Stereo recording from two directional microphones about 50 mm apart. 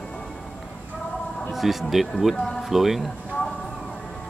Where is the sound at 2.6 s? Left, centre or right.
Centre.